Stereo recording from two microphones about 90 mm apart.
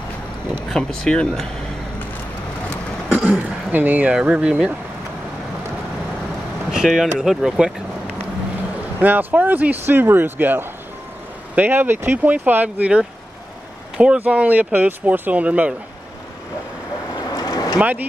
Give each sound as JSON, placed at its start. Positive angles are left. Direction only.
{"t": 0.7, "sound": "speech", "side_deg": 5}
{"t": 3.3, "sound": "speech", "side_deg": -15}
{"t": 6.7, "sound": "speech", "side_deg": -5}
{"t": 9.0, "sound": "speech", "side_deg": -20}
{"t": 17.3, "sound": "vehicle", "side_deg": 45}
{"t": 17.7, "sound": "speech", "side_deg": -20}